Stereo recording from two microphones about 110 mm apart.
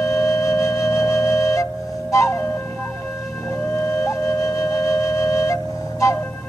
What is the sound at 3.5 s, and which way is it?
Flute, 20° left (ahead or behind).